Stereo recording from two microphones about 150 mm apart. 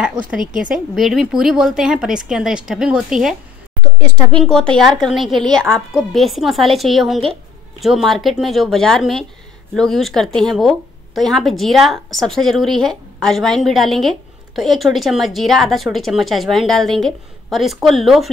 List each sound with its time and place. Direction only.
0.4 s speech: 60° right (ahead or behind)
0.7 s a woman's voice: centre (ahead or behind)
4.4 s a woman's voice: 5° left (ahead or behind)